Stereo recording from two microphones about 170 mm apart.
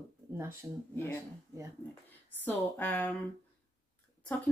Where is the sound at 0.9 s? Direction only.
10° left (ahead or behind).